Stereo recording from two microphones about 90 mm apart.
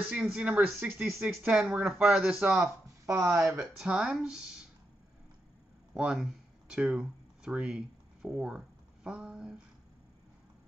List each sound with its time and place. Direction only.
0.1 s speech: 10° right (ahead or behind)
0.7 s speech: 20° right (ahead or behind)
1.0 s speech: centre (ahead or behind)
2.6 s speech: 25° right (ahead or behind)
3.4 s speech: 15° right (ahead or behind)
5.9 s speech: 5° right (ahead or behind)